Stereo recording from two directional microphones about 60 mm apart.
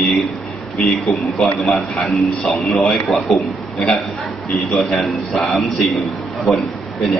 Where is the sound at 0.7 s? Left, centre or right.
Centre.